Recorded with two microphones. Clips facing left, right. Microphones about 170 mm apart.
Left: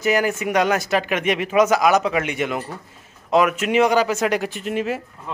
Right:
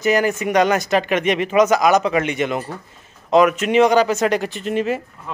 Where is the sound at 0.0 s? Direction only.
5° left (ahead or behind).